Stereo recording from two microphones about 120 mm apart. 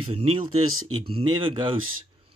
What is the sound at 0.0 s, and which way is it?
Speech, 50° right (ahead or behind).